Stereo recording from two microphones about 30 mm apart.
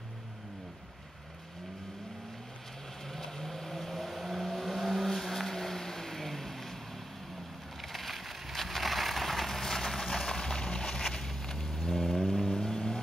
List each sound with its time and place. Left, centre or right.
3.1 s vehicle: centre
7.9 s a sound: centre; by 11.0 s left
11.0 s vehicle: centre